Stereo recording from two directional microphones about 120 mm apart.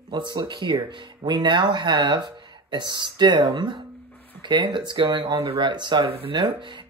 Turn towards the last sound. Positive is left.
turn(degrees=-45)  # may be behind; listen again after turning